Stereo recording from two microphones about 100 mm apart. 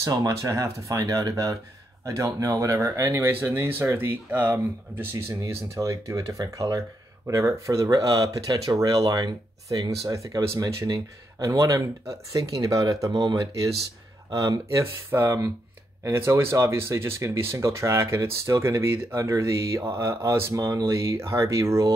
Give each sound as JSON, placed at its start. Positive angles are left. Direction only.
{"t": 0.0, "sound": "speech", "side_deg": -35}